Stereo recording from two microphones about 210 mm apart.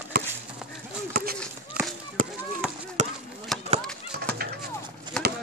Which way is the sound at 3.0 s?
35° right (ahead or behind).